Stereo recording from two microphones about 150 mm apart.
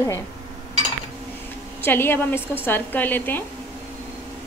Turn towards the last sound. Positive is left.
turn(degrees=15)  # may be behind; listen again after turning